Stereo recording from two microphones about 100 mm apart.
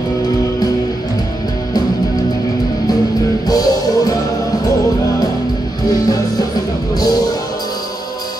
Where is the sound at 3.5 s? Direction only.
40° left (ahead or behind).